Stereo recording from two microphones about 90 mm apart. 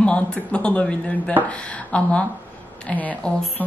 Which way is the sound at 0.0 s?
10° left (ahead or behind).